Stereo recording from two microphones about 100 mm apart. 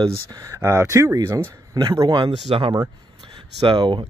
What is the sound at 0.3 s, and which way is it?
Speech, 35° right (ahead or behind).